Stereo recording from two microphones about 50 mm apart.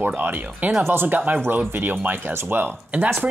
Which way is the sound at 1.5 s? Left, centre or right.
Right.